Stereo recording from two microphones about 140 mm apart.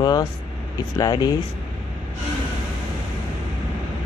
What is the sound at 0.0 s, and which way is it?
Speech, 25° left (ahead or behind).